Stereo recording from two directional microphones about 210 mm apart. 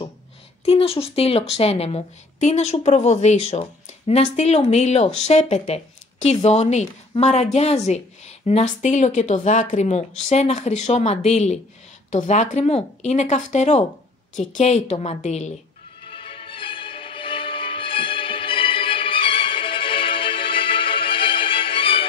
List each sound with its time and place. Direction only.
0.7 s speech: 25° left (ahead or behind)
16.1 s music: 25° left (ahead or behind)